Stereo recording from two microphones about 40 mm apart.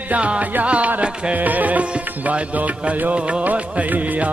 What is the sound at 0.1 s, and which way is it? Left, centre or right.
Music, right.